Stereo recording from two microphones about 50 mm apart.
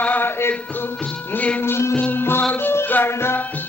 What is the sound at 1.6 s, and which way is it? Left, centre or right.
Music, left.